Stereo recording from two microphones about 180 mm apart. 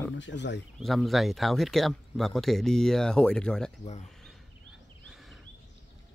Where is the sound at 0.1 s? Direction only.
85° left.